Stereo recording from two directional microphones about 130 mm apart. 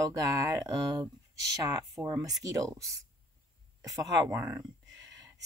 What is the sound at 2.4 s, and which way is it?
Speech, 25° right (ahead or behind).